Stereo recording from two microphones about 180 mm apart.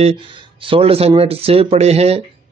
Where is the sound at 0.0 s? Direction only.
30° right (ahead or behind).